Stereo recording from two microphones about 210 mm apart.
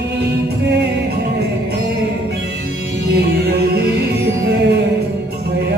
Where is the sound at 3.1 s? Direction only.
50° right (ahead or behind).